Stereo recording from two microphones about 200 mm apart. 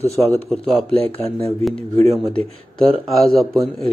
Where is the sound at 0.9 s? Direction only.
30° left (ahead or behind).